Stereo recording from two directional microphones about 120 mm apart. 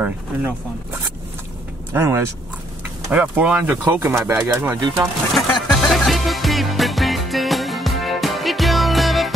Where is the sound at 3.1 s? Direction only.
10° right (ahead or behind).